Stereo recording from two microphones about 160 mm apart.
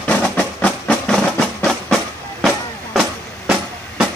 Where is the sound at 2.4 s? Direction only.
Centre (ahead or behind).